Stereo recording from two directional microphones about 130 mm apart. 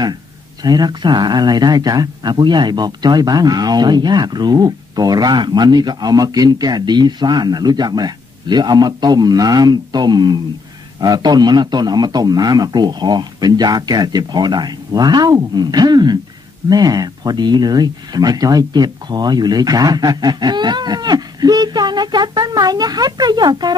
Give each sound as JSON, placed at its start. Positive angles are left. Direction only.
{"t": 0.7, "sound": "speech", "side_deg": -35}